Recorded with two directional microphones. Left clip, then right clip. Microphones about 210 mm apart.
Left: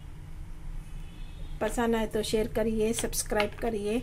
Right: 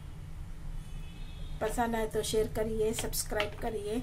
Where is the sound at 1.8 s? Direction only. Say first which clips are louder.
Left 3 dB; 40° left (ahead or behind).